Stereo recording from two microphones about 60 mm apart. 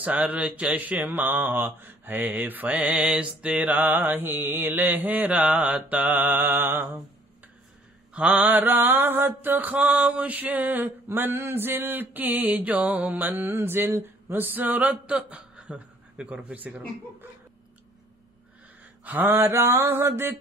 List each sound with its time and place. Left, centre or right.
0.2 s mantra: right
2.9 s mantra: centre; by 7.0 s right
8.1 s mantra: right
19.0 s mantra: right